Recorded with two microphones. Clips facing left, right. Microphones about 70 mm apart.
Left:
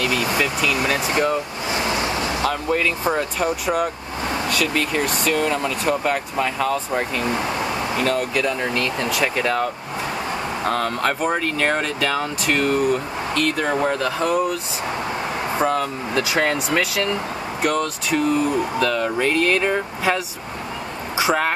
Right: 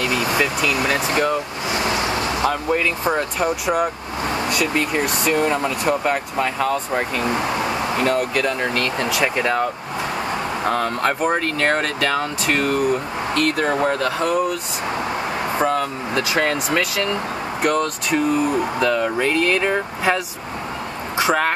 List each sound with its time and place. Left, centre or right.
0.0 s speech: centre
1.8 s vehicle: right
2.7 s speech: centre
15.5 s speech: centre
18.1 s speech: centre
19.1 s speech: centre